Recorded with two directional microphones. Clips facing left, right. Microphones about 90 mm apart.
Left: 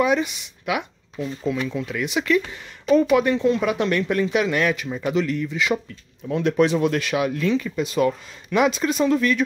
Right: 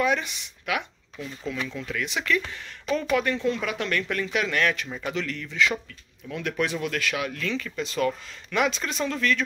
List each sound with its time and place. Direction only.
0.0 s speech: 10° left (ahead or behind)
6.4 s speech: 25° left (ahead or behind)